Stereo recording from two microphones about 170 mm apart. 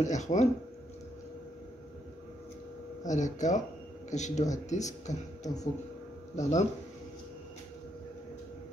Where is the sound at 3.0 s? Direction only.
45° left (ahead or behind).